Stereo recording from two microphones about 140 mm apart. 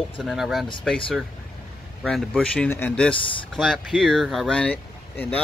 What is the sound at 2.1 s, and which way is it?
Speech, 5° left (ahead or behind).